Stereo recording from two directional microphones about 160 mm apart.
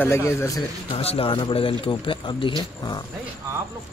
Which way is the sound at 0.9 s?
35° left (ahead or behind).